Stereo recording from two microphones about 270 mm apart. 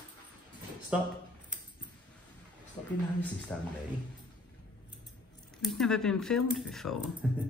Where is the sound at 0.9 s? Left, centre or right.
Centre.